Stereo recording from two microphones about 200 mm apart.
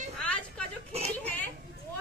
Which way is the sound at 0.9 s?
30° right (ahead or behind).